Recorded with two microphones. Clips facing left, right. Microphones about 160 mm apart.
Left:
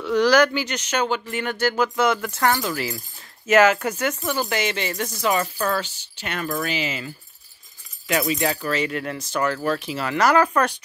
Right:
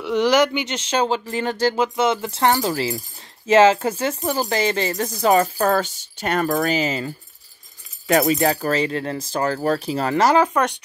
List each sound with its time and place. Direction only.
0.0 s speech: 20° right (ahead or behind)